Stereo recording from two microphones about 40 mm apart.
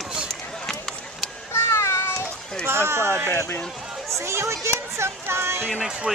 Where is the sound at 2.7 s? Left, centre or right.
Right.